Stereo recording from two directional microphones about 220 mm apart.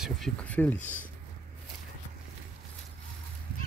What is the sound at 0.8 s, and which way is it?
Speech, 35° left (ahead or behind).